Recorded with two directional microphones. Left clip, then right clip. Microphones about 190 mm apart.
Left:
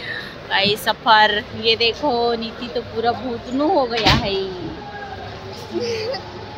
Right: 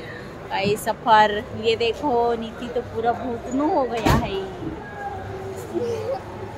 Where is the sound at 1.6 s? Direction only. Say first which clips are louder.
Left 4 dB; 30° left (ahead or behind).